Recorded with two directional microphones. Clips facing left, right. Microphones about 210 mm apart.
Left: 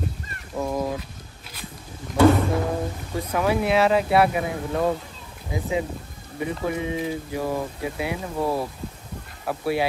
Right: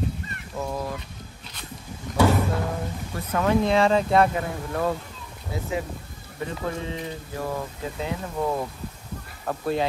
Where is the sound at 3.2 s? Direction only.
10° left (ahead or behind).